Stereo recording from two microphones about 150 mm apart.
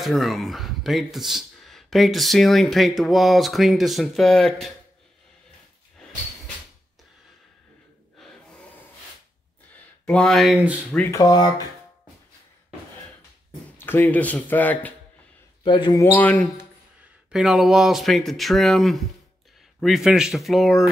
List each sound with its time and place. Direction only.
0.0 s speech: centre (ahead or behind)
8.2 s gasp: centre (ahead or behind)
10.0 s speech: 5° left (ahead or behind)
11.1 s speech: 25° left (ahead or behind)
13.7 s speech: 15° left (ahead or behind)
15.6 s speech: 35° left (ahead or behind)
16.2 s speech: 10° left (ahead or behind)
17.3 s speech: 5° right (ahead or behind)